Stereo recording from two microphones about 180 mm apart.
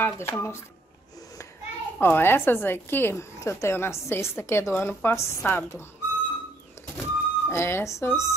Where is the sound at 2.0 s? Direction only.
10° left (ahead or behind).